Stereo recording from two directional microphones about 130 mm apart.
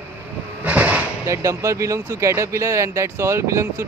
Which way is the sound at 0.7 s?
10° right (ahead or behind).